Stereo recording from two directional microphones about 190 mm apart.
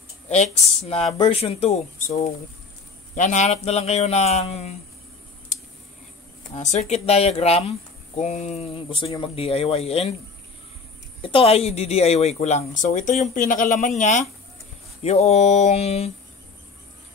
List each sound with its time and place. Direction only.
0.3 s speech: 35° left (ahead or behind)
3.2 s speech: 40° left (ahead or behind)
6.5 s speech: 40° left (ahead or behind)
11.1 s speech: 30° left (ahead or behind)